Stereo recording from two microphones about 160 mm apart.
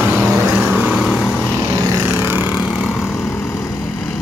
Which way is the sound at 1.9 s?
15° right (ahead or behind).